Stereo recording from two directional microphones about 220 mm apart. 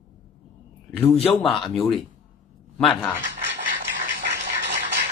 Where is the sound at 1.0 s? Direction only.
25° left (ahead or behind).